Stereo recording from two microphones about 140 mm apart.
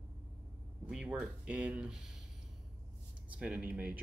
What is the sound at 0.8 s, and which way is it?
Speech, 5° right (ahead or behind).